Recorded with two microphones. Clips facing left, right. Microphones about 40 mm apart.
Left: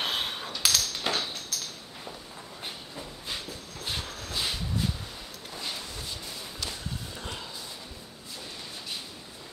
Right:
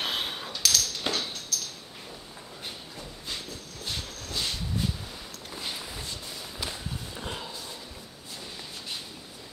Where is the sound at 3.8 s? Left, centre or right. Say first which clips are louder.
Left 1 dB; centre.